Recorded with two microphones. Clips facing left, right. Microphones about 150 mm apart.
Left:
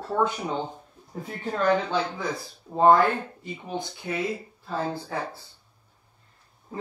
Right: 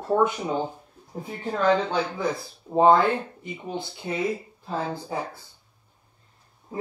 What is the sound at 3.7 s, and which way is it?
Speech, 20° left (ahead or behind).